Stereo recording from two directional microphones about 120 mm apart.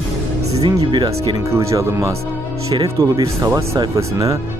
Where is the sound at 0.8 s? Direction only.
40° right (ahead or behind).